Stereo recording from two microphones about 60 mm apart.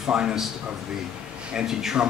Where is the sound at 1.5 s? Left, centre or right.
Centre.